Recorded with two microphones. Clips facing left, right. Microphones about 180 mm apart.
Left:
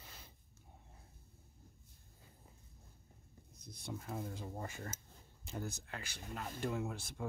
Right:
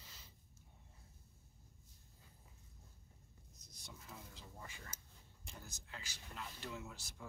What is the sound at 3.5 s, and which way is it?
Speech, 60° left (ahead or behind).